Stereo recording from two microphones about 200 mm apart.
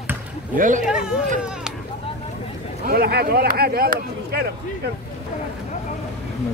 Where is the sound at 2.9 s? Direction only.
50° right (ahead or behind).